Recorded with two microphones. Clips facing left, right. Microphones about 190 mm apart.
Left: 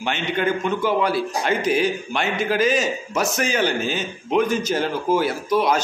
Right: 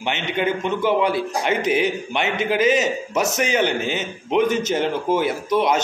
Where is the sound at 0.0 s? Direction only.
20° right (ahead or behind).